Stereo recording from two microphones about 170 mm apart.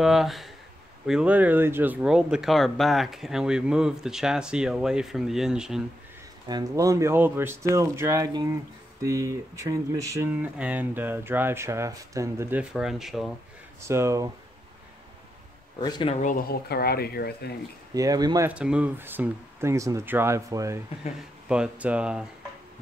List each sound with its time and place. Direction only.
0.0 s speech: centre (ahead or behind)
6.4 s speech: 20° right (ahead or behind)
10.4 s speech: 10° right (ahead or behind)
13.7 s speech: 15° right (ahead or behind)
15.8 s speech: 25° left (ahead or behind)
16.2 s speech: 55° left (ahead or behind)
17.9 s speech: 20° right (ahead or behind)
18.5 s speech: 5° right (ahead or behind)
21.5 s speech: 5° right (ahead or behind)